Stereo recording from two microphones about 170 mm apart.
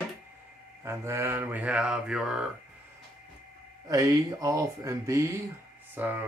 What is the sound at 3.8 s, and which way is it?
Speech, 20° right (ahead or behind).